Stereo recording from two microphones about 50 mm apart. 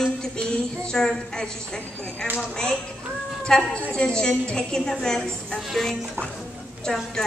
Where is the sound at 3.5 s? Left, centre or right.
Centre.